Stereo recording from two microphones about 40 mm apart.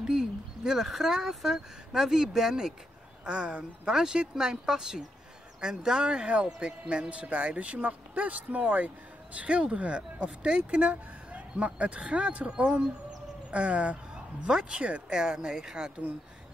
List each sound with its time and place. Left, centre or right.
0.0 s a sound: centre
0.8 s speech: centre
3.3 s speech: right
14.1 s speech: right
15.1 s speech: right